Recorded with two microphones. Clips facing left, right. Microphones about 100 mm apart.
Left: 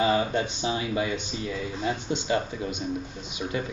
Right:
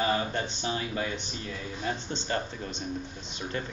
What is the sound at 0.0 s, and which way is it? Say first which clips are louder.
Speech: left 5 dB; 15° left (ahead or behind).